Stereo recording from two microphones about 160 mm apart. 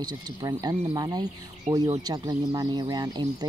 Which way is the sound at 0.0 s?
25° right (ahead or behind).